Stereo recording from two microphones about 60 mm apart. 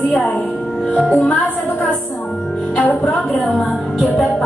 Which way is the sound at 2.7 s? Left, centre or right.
Left.